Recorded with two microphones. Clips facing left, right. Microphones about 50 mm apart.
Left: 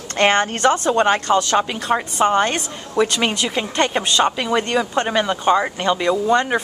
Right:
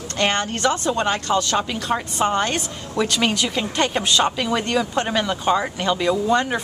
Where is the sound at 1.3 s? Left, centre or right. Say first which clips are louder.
Left 4 dB; centre.